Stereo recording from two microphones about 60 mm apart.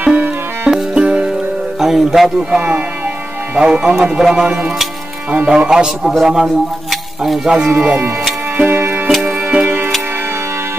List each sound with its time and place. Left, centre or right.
0.0 s music: right
0.7 s music: centre
1.8 s a man's voice: centre
2.5 s a man's voice: right
4.5 s music: right
5.6 s a man's voice: centre
6.9 s cutlery: centre
7.5 s a man's voice: centre
7.8 s speech: right
8.5 s music: right
9.2 s music: right